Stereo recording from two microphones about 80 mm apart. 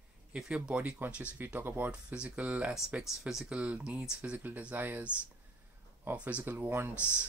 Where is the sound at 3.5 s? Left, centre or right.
Centre.